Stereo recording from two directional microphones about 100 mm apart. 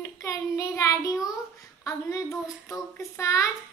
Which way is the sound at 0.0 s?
30° left (ahead or behind).